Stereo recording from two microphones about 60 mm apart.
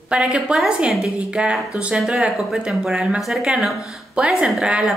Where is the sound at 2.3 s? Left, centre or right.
Centre.